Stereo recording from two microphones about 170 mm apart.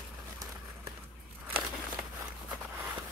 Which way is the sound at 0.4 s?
20° right (ahead or behind).